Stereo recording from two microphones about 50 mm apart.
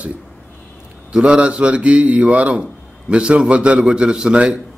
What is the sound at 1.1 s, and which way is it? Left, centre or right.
A man's voice, centre.